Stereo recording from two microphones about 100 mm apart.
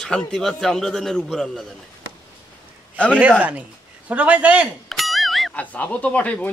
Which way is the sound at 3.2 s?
15° right (ahead or behind).